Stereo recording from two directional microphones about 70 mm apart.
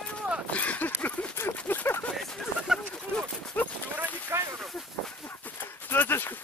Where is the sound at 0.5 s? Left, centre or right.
Left.